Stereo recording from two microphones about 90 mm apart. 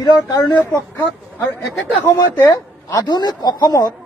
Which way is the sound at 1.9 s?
20° left (ahead or behind).